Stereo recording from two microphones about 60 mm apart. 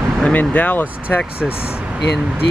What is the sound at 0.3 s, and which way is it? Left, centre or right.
Speech, left.